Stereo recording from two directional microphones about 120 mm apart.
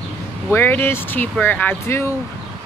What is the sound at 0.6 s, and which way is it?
A woman's voice, 20° left (ahead or behind).